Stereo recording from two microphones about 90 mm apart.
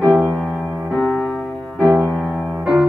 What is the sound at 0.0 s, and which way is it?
Music, 5° right (ahead or behind).